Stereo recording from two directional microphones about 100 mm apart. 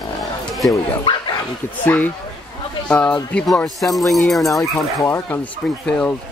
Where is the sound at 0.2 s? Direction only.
Centre (ahead or behind).